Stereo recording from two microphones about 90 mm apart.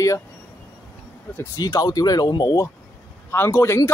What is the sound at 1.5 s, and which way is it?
Speech, 45° left (ahead or behind).